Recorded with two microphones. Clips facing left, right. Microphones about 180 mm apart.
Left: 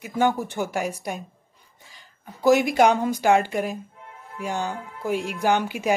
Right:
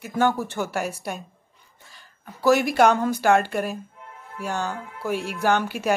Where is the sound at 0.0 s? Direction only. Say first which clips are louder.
Even; 15° left (ahead or behind).